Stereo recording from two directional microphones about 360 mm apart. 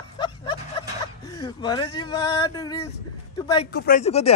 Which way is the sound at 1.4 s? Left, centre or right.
Centre.